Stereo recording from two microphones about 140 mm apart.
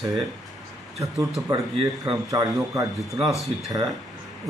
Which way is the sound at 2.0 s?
25° right (ahead or behind).